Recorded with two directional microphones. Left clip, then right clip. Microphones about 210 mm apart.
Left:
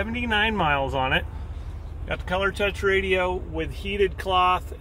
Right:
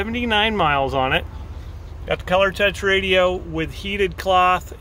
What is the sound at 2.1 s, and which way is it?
Speech, 50° right (ahead or behind).